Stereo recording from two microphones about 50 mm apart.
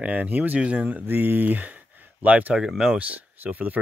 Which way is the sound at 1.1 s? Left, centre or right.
Right.